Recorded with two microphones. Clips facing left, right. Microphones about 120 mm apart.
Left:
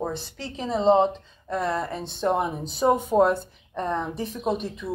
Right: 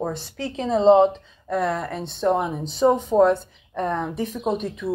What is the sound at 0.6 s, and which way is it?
Speech, 30° right (ahead or behind).